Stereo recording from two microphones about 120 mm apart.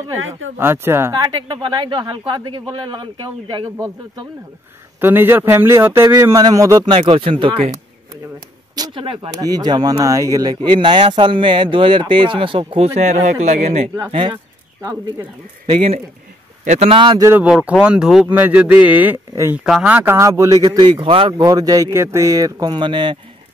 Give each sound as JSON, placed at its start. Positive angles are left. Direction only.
{"t": 0.3, "sound": "a man's voice", "side_deg": -20}
{"t": 1.2, "sound": "speech", "side_deg": -40}
{"t": 5.0, "sound": "a man's voice", "side_deg": -20}
{"t": 6.9, "sound": "speech", "side_deg": -45}
{"t": 8.7, "sound": "speech", "side_deg": -35}
{"t": 9.0, "sound": "speech", "side_deg": -50}
{"t": 9.4, "sound": "speech", "side_deg": -35}
{"t": 15.6, "sound": "speech", "side_deg": -50}
{"t": 16.6, "sound": "speech", "side_deg": -70}
{"t": 16.9, "sound": "speech", "side_deg": -40}
{"t": 17.4, "sound": "speech", "side_deg": -15}
{"t": 20.2, "sound": "a man's voice", "side_deg": -25}
{"t": 20.6, "sound": "speech", "side_deg": -40}
{"t": 21.5, "sound": "speech", "side_deg": -30}